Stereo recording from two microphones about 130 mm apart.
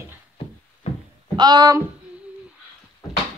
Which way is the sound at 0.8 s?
55° left (ahead or behind).